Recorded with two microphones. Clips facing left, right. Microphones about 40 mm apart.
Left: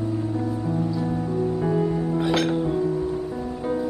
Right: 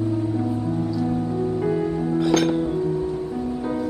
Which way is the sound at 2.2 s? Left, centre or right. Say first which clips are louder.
Right 4 dB; centre.